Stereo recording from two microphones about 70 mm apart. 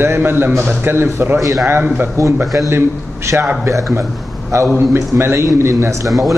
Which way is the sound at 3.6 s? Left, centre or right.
Right.